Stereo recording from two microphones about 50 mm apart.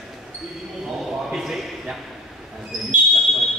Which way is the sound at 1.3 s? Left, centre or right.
Centre.